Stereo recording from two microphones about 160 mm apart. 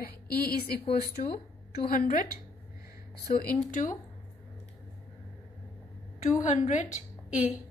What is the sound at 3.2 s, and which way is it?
Speech, 65° left (ahead or behind).